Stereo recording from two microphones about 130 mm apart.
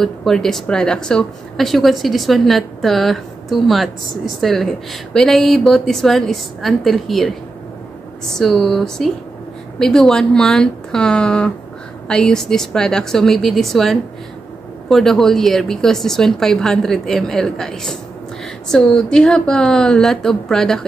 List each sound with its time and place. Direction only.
0.0 s a woman's voice: 5° left (ahead or behind)